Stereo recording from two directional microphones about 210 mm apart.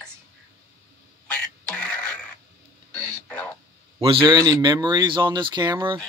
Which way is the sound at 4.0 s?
25° right (ahead or behind).